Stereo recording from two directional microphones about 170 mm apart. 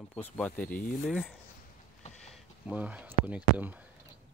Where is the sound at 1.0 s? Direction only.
Centre (ahead or behind).